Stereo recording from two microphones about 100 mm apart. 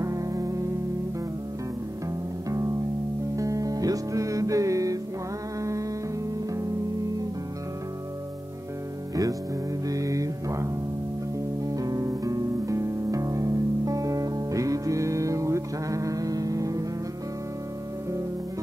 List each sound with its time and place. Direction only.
0.0 s music: 35° right (ahead or behind)
3.3 s music: 35° right (ahead or behind)
9.1 s music: 35° right (ahead or behind)